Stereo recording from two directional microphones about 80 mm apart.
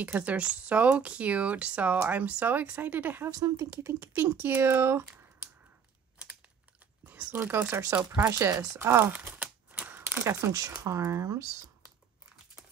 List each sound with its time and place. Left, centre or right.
0.0 s speech: centre
3.3 s speech: right
7.1 s speech: right
7.7 s speech: right
9.1 s a sound: right
10.8 s speech: right